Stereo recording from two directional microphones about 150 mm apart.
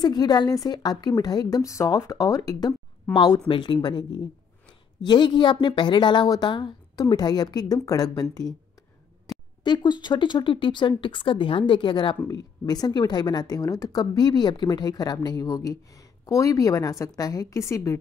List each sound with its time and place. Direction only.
0.0 s a woman's voice: 25° left (ahead or behind)
3.4 s a woman's voice: 35° left (ahead or behind)
9.6 s a woman's voice: 30° left (ahead or behind)